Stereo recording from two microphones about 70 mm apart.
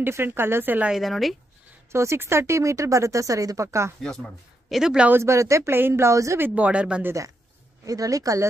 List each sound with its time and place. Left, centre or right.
0.0 s speech: right
0.9 s speech: centre
1.9 s speech: right
4.0 s speech: centre
4.6 s speech: centre
5.1 s speech: right
6.3 s speech: right
7.8 s speech: right